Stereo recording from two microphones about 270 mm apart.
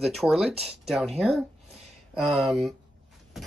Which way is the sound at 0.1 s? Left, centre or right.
Centre.